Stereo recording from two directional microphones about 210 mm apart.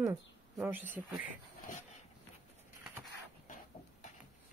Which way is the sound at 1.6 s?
40° left (ahead or behind).